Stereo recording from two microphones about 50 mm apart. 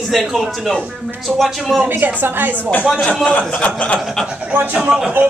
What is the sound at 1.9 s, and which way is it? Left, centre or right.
Speech, right.